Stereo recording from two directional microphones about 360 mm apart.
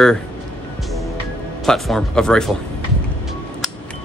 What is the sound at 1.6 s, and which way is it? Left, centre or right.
Speech, centre.